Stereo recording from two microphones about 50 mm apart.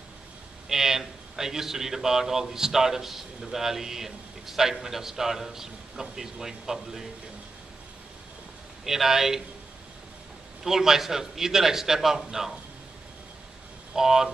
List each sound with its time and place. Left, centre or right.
0.7 s speech: centre
8.8 s speech: centre
10.6 s speech: centre
13.9 s speech: centre